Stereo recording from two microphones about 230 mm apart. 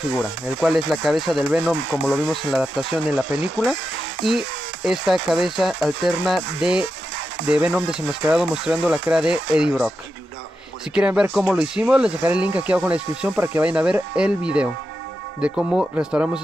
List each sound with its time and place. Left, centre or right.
0.1 s speech: centre
11.0 s speech: centre